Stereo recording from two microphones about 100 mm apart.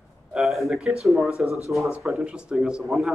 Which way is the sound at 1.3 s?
30° left (ahead or behind).